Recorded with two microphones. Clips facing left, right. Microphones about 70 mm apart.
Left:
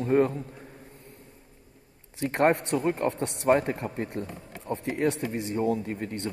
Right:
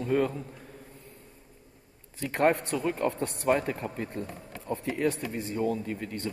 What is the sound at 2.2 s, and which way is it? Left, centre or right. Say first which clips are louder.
A man's voice: left 2 dB; left.